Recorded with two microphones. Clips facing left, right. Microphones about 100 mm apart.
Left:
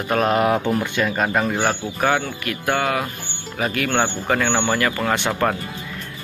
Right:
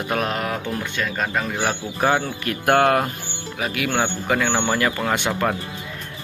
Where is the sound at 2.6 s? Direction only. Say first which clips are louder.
Right 5 dB; 55° right (ahead or behind).